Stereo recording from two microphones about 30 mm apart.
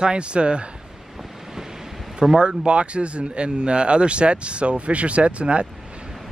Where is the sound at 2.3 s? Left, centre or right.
Right.